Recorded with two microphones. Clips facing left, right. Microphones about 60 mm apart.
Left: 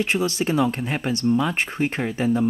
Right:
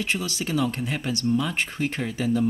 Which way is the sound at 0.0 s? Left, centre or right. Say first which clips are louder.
Left 6 dB; left.